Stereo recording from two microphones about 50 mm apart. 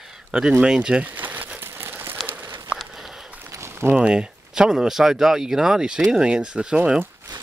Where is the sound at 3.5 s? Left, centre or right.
Right.